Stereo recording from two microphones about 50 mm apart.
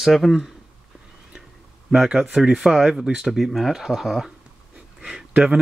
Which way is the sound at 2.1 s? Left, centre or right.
Centre.